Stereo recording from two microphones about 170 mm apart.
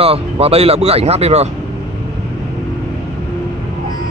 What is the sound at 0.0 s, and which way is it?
Speech, 35° right (ahead or behind).